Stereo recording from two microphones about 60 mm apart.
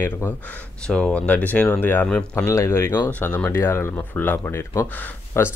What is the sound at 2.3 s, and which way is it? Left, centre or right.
Speech, left.